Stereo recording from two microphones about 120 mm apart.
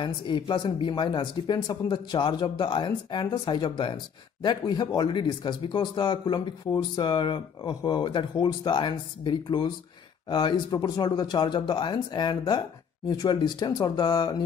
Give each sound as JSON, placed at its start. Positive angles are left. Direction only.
{"t": 0.0, "sound": "speech", "side_deg": 40}